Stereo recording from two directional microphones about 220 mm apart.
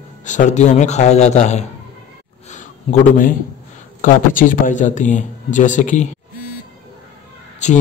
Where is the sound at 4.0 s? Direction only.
40° left (ahead or behind).